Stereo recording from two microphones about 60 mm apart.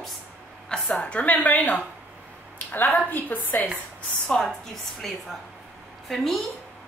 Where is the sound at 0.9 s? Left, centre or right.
Left.